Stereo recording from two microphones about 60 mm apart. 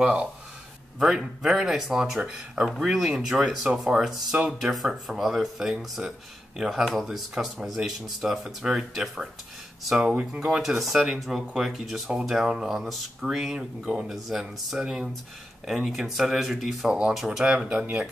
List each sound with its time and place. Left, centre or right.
0.0 s speech: centre
9.9 s speech: centre
10.4 s speech: centre